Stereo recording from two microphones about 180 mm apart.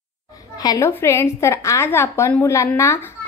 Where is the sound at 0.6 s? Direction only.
20° left (ahead or behind).